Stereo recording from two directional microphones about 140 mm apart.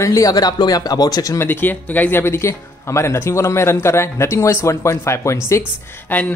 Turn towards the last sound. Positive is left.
turn(degrees=10)  # may be behind; listen again after turning